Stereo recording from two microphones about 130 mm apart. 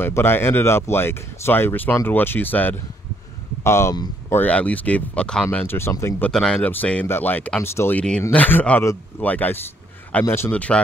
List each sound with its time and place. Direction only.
0.0 s speech: 15° left (ahead or behind)
6.3 s speech: 5° left (ahead or behind)